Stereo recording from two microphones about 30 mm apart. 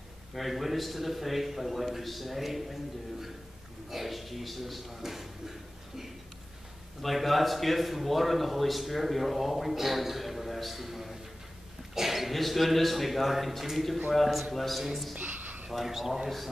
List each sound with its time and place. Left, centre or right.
0.3 s a man's voice: centre
7.0 s a man's voice: centre
15.1 s a sound: right
15.7 s a man's voice: centre